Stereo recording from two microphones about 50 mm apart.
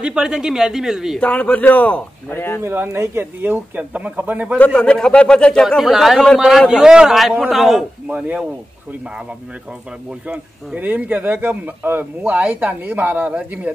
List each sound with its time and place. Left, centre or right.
0.0 s speech: centre
1.2 s a man's voice: left
2.3 s speech: left
3.2 s speech: right
4.6 s a man's voice: left
5.8 s speech: centre
6.7 s speech: centre
10.2 s speech: right
11.0 s speech: right
12.2 s speech: right
12.8 s speech: right
13.3 s speech: right